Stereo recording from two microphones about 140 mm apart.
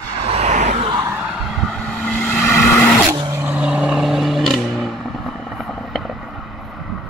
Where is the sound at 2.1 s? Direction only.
10° left (ahead or behind).